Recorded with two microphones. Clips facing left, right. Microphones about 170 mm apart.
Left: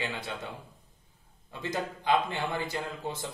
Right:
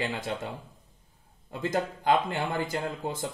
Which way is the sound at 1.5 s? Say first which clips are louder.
Right 5 dB; 45° right (ahead or behind).